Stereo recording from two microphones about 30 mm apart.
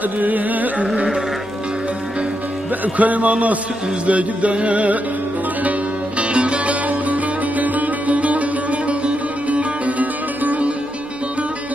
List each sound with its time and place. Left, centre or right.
0.0 s carnatic music: right
2.8 s speech: right
4.0 s music: right
6.2 s music: right